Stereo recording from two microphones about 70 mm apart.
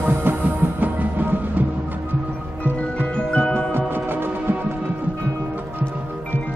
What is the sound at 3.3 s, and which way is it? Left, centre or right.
Music, centre.